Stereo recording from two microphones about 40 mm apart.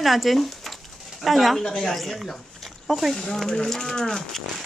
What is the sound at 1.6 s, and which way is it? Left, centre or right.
Speech, centre.